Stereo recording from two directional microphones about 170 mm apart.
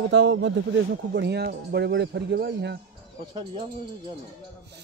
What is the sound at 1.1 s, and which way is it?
Speech, 75° right (ahead or behind).